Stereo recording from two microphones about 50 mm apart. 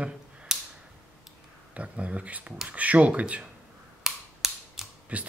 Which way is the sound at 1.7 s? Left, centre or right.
Right.